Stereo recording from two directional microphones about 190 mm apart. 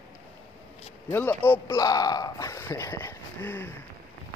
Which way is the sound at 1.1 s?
10° left (ahead or behind).